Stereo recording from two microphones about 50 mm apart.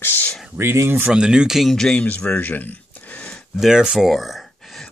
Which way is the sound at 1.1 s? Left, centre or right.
Centre.